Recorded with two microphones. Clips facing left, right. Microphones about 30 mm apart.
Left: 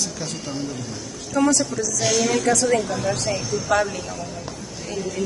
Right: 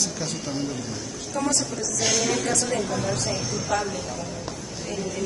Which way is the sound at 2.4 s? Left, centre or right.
Left.